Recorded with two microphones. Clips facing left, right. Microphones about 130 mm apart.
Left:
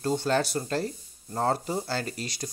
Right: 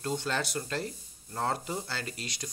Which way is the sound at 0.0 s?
35° left (ahead or behind).